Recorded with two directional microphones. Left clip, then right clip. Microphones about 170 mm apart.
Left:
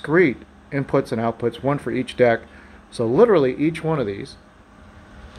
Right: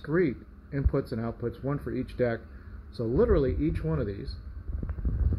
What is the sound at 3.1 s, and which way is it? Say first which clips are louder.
Speech: left 10 dB; 15° left (ahead or behind).